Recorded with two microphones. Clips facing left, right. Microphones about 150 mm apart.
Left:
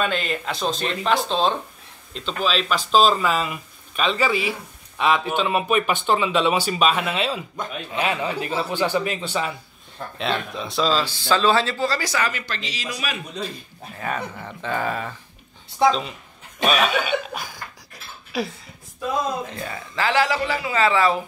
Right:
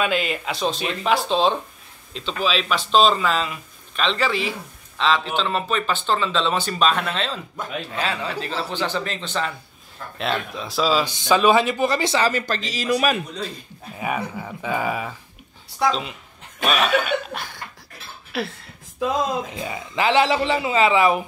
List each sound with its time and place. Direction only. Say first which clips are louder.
0.0 s speech: right 1 dB; 5° right (ahead or behind); by 9.5 s 10° left (ahead or behind)
10.1 s speech: even; centre (ahead or behind); by 13.2 s 50° right (ahead or behind)
13.9 s speech: right 2 dB; 10° right (ahead or behind)
19.0 s speech: right 3 dB; 90° right
19.5 s speech: right 2 dB; 15° right (ahead or behind)